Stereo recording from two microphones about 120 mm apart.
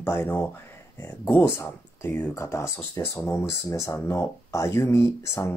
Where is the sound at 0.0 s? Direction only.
20° left (ahead or behind).